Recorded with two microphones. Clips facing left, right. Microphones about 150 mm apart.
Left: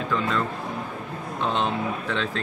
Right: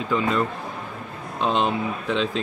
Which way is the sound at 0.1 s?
15° right (ahead or behind).